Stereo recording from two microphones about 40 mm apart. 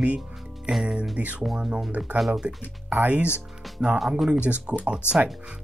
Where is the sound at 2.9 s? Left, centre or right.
Right.